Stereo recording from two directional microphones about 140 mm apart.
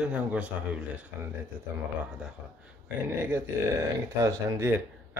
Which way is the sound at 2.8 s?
15° right (ahead or behind).